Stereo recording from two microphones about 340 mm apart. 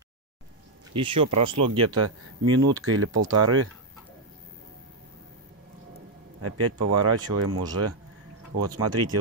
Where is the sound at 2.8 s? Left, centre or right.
Right.